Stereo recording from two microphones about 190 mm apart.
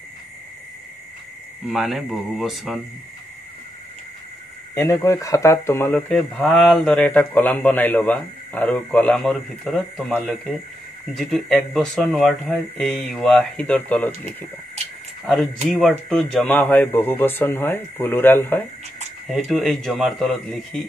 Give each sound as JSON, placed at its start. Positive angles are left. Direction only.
{"t": 1.7, "sound": "a man's voice", "side_deg": 0}
{"t": 4.7, "sound": "speech", "side_deg": 15}
{"t": 5.9, "sound": "a man's voice", "side_deg": 5}
{"t": 14.8, "sound": "a sound", "side_deg": -35}
{"t": 15.7, "sound": "speech", "side_deg": 5}
{"t": 19.2, "sound": "a man's voice", "side_deg": 0}